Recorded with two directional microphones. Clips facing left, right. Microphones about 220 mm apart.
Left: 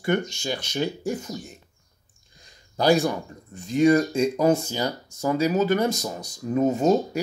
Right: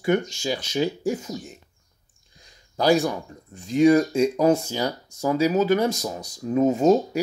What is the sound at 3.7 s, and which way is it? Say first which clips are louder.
Speech: right 2 dB; 5° right (ahead or behind).